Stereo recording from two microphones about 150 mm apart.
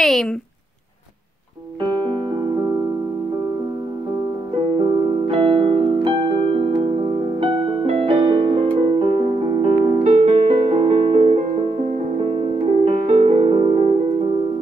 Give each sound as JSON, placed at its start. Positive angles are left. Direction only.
{"t": 0.0, "sound": "speech", "side_deg": 0}
{"t": 1.9, "sound": "music", "side_deg": -35}
{"t": 4.7, "sound": "music", "side_deg": -40}